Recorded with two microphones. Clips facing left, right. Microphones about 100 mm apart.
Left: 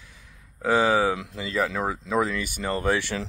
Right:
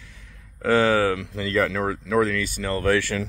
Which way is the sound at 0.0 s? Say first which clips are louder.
Right 2 dB; 15° left (ahead or behind).